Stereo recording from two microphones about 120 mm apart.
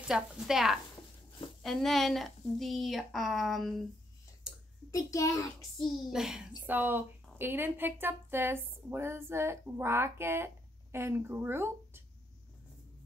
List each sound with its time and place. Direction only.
0.1 s a woman's voice: 5° right (ahead or behind)
4.5 s a sound: 5° right (ahead or behind)
4.9 s a child's voice: 25° left (ahead or behind)
6.0 s a woman's voice: 5° right (ahead or behind)
6.6 s speech: 15° right (ahead or behind)